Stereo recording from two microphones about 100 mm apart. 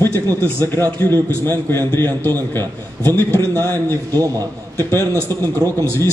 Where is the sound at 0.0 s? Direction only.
20° left (ahead or behind).